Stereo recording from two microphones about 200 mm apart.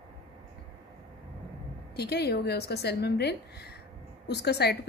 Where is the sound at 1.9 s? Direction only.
55° left (ahead or behind).